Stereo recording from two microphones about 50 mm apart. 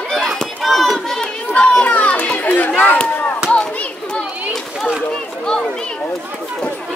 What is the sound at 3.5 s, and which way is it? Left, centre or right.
Children playing, centre.